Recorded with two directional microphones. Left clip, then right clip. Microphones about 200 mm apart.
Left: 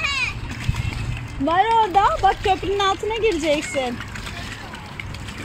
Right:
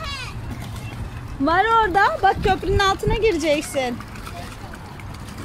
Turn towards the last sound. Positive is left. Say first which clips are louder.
# even
turn(degrees=0)  # may be behind; listen again after turning